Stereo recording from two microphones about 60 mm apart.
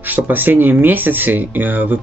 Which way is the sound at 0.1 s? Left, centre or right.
Right.